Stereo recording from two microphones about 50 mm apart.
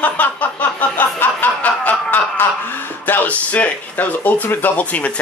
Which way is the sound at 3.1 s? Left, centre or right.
Left.